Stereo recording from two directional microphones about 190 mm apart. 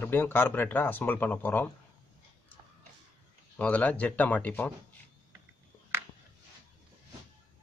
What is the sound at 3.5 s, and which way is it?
A man's voice, 5° left (ahead or behind).